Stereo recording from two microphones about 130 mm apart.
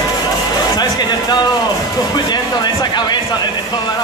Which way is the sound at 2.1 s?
35° left (ahead or behind).